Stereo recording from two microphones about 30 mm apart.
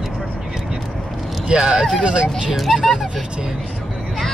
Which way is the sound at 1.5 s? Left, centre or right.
Right.